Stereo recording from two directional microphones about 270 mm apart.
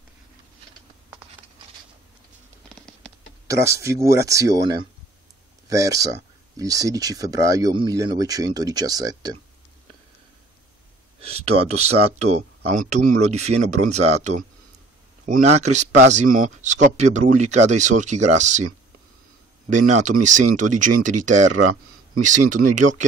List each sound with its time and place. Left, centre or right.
3.4 s speech: centre
11.1 s a sound: right
12.6 s speech: right
19.7 s speech: right